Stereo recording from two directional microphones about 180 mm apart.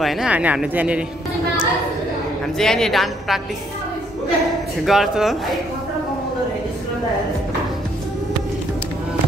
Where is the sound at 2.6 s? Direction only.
5° left (ahead or behind).